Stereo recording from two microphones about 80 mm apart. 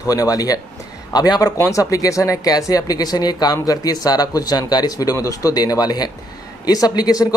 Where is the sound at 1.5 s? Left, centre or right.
Left.